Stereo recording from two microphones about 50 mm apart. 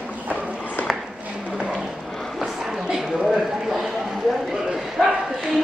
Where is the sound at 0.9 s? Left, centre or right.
Right.